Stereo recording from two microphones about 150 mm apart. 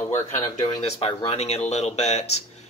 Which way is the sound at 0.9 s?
35° left (ahead or behind).